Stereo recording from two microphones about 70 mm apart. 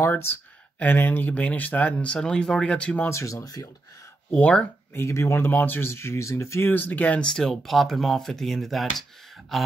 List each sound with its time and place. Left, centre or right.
0.0 s speech: left; by 3.1 s centre
3.1 s speech: left
4.3 s speech: left
4.9 s speech: left
6.7 s speech: left
7.2 s speech: centre